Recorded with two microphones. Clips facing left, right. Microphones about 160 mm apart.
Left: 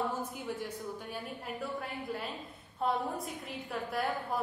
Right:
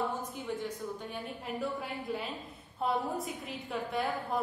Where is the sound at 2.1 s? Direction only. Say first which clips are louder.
Right 2 dB; centre (ahead or behind).